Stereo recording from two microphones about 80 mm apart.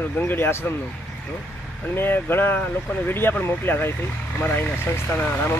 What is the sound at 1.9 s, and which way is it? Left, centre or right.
Speech, left.